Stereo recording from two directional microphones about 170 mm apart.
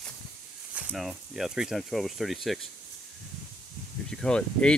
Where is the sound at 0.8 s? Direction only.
5° right (ahead or behind).